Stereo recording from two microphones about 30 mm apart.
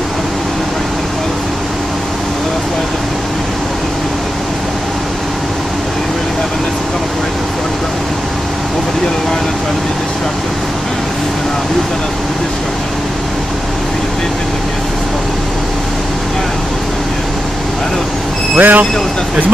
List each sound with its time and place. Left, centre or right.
18.6 s speech: right